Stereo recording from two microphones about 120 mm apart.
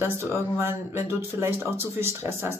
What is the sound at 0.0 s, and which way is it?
Speech, 20° right (ahead or behind).